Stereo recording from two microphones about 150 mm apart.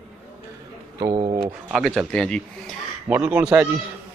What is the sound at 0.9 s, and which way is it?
Speech, 25° right (ahead or behind).